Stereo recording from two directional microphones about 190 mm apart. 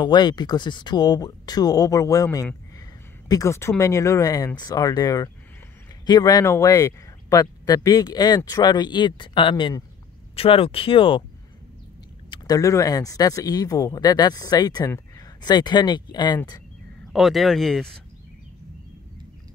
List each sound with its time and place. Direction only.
0.0 s speech: 20° left (ahead or behind)
12.3 s speech: 20° left (ahead or behind)
17.1 s speech: centre (ahead or behind)